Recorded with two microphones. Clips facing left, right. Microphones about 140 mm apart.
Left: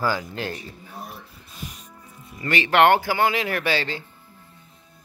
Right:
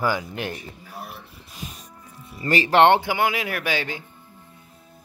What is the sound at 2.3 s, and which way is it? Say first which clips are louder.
Speech: right 2 dB; 35° right (ahead or behind).